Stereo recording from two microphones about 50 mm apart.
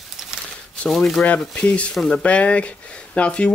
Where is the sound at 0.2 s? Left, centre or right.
Centre.